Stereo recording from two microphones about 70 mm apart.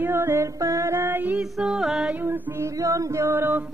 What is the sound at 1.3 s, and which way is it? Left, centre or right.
Music, centre.